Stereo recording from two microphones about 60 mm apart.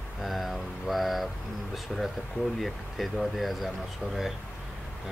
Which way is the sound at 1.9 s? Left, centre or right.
Centre.